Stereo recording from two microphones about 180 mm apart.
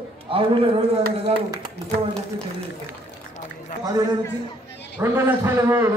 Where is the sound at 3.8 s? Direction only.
20° right (ahead or behind).